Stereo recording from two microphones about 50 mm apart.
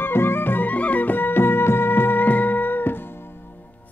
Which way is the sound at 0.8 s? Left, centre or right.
Left.